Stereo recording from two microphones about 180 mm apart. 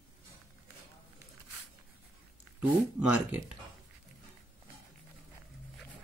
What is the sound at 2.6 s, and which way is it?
Speech, 5° right (ahead or behind).